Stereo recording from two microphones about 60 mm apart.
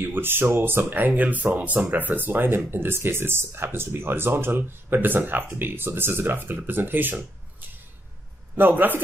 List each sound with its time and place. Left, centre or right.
0.0 s speech: right
8.5 s speech: right